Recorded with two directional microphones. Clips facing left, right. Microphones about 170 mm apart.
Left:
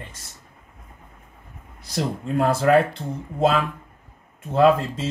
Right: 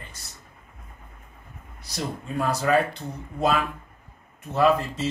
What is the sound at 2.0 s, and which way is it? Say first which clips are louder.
Speech: left 6 dB; 65° left (ahead or behind).